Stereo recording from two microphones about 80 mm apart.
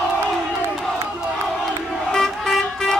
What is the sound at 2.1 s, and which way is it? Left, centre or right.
Vehicle, centre.